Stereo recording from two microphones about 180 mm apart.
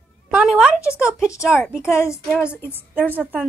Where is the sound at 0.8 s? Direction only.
15° left (ahead or behind).